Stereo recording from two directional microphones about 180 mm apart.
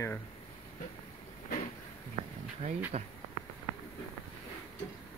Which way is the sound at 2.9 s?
35° right (ahead or behind).